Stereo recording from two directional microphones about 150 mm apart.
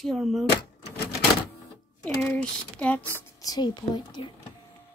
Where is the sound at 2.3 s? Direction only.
10° left (ahead or behind).